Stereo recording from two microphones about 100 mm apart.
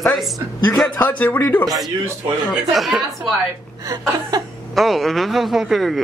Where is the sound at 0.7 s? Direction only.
10° left (ahead or behind).